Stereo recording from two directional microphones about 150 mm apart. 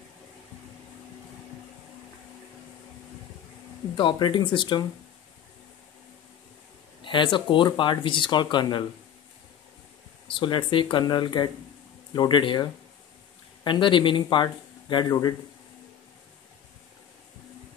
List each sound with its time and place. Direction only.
3.9 s speech: 30° left (ahead or behind)
7.0 s speech: 35° left (ahead or behind)
10.2 s speech: 35° left (ahead or behind)
13.7 s speech: 35° left (ahead or behind)